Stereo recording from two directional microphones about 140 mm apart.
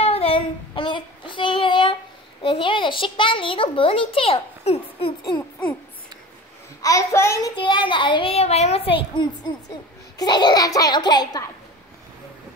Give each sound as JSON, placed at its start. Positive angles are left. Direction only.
{"t": 0.0, "sound": "child singing", "side_deg": 45}
{"t": 2.4, "sound": "a child's voice", "side_deg": 40}
{"t": 6.8, "sound": "a child's voice", "side_deg": 25}
{"t": 7.5, "sound": "a child's voice", "side_deg": 35}